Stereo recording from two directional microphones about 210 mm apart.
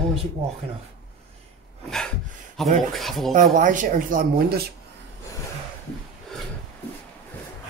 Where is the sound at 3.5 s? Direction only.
40° right (ahead or behind).